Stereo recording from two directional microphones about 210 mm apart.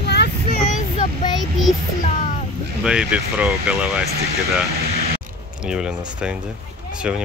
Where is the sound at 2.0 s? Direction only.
35° left (ahead or behind).